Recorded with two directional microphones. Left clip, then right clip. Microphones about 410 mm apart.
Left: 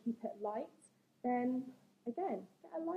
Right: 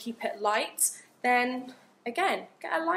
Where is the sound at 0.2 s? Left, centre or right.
Centre.